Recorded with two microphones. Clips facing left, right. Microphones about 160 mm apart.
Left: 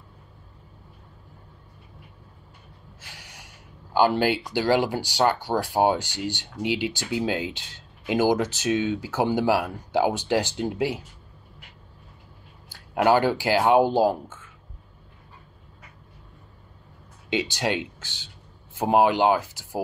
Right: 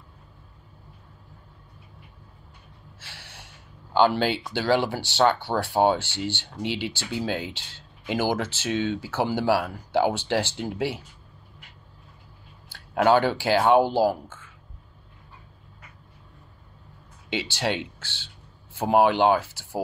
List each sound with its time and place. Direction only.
3.0 s speech: 15° left (ahead or behind)
12.6 s speech: 10° left (ahead or behind)
17.3 s speech: 15° left (ahead or behind)